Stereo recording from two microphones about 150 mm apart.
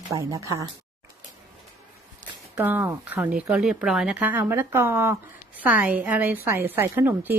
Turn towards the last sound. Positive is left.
turn(degrees=-15)  # may be behind; listen again after turning